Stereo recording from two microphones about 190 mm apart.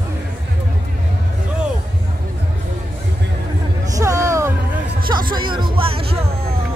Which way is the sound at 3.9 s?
15° right (ahead or behind).